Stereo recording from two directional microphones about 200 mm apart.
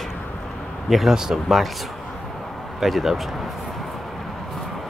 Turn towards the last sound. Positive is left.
turn(degrees=0)  # may be behind; listen again after turning